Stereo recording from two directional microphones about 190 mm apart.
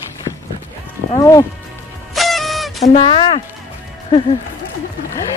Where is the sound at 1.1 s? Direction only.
20° left (ahead or behind).